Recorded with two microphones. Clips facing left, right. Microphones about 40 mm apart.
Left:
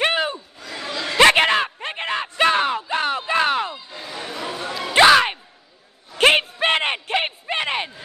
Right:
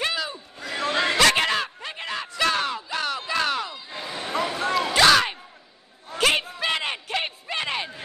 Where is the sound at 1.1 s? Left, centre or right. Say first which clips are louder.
Left 8 dB; left.